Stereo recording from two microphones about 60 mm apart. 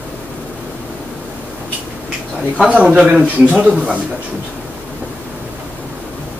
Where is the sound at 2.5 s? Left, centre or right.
Centre.